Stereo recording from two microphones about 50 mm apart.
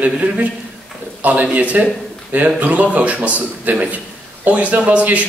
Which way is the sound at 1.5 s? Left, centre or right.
Right.